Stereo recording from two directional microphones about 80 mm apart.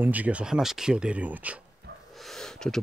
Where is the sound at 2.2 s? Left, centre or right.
Centre.